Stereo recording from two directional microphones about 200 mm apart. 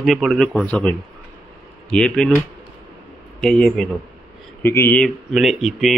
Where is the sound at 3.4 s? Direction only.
5° left (ahead or behind).